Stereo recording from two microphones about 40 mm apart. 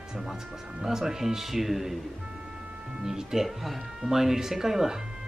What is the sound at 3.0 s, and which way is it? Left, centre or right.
Speech, centre.